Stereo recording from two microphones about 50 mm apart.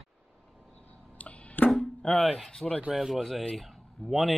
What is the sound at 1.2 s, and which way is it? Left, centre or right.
Music, left.